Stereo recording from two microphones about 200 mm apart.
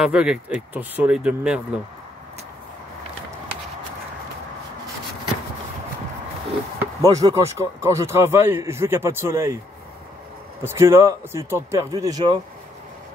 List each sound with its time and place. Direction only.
0.0 s speech: 5° right (ahead or behind)
6.8 s speech: 15° right (ahead or behind)
10.6 s speech: 15° right (ahead or behind)